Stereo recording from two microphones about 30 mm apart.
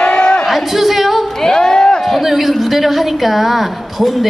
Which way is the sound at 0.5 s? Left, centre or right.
Centre.